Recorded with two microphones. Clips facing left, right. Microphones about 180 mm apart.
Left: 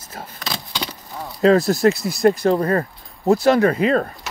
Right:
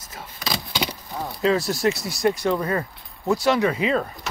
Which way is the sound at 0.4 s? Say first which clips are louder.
Right 2 dB; centre (ahead or behind).